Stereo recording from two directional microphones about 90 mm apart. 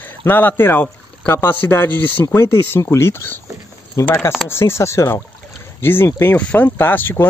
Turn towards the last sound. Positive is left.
turn(degrees=20)  # may be behind; listen again after turning